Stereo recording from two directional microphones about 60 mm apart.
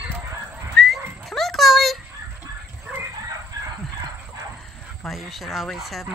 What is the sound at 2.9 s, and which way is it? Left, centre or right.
Chicken, centre.